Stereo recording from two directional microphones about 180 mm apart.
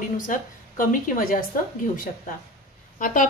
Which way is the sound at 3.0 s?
45° left (ahead or behind).